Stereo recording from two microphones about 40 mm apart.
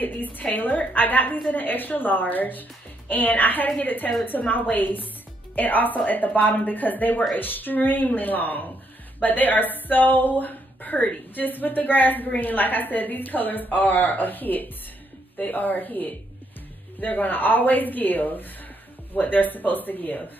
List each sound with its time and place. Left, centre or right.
0.0 s a woman's voice: left